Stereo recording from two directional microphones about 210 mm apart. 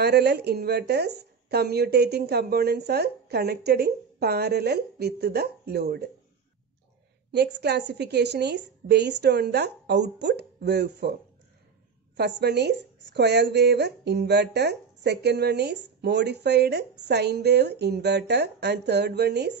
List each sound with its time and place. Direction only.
0.0 s speech: 50° right (ahead or behind)
7.3 s speech: 55° right (ahead or behind)
12.2 s speech: 55° right (ahead or behind)